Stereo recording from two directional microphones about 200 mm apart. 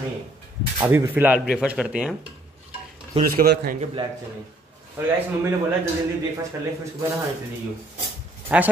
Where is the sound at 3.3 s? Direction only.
50° right (ahead or behind).